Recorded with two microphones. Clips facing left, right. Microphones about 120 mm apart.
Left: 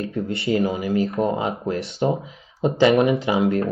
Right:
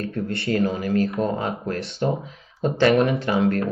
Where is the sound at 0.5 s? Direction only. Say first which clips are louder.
Left 1 dB; 10° left (ahead or behind).